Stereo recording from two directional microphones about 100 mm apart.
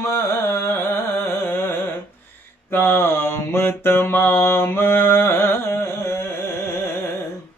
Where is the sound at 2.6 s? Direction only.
25° left (ahead or behind).